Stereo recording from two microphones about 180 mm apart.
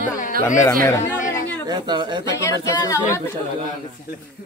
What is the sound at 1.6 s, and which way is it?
Speech, 25° right (ahead or behind).